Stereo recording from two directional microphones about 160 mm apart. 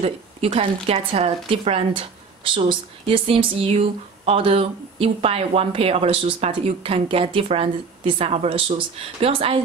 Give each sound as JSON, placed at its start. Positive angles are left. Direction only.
{"t": 0.0, "sound": "speech", "side_deg": -35}